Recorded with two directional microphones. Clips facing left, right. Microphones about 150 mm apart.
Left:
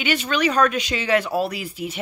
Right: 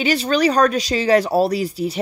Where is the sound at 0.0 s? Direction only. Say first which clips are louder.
Right 5 dB; 35° right (ahead or behind).